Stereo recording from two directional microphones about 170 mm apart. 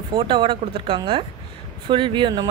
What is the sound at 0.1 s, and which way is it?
A woman's voice, 30° right (ahead or behind).